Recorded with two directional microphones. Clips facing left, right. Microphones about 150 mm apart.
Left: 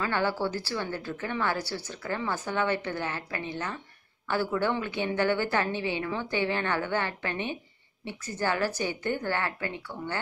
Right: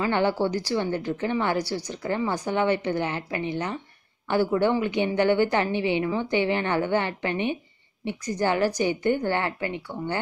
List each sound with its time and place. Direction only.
0.0 s a woman's voice: 20° right (ahead or behind)